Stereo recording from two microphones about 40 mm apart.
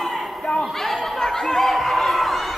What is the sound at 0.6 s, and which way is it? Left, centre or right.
Chatter, centre.